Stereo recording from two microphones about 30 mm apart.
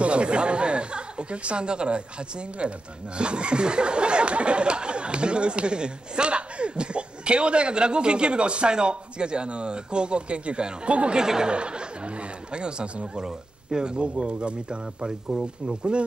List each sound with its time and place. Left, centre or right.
0.0 s speech: right
11.1 s speech: right
12.5 s speech: right